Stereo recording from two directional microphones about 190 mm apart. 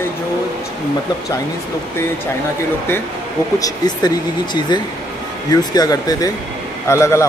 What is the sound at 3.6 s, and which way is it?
A man's voice, 20° left (ahead or behind).